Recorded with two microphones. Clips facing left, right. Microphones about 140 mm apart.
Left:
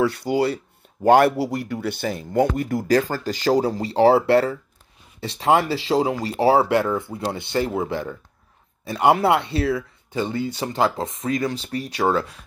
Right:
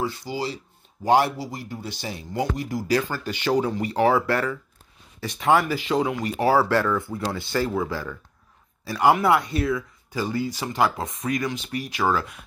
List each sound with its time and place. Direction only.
0.0 s speech: 65° left (ahead or behind); by 12.4 s 30° left (ahead or behind)